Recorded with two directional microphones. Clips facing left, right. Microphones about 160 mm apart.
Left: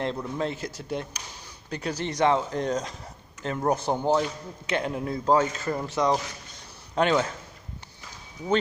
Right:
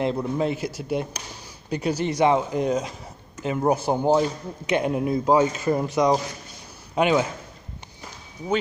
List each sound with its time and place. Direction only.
0.0 s speech: 10° right (ahead or behind)